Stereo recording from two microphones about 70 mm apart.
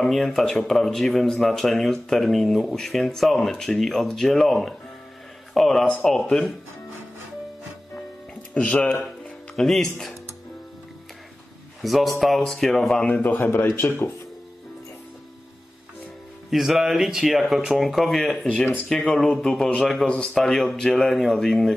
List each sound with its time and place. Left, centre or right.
0.0 s speech: centre
8.5 s a man's voice: left
9.6 s speech: centre
11.8 s speech: centre
13.1 s a man's voice: left
16.4 s speech: centre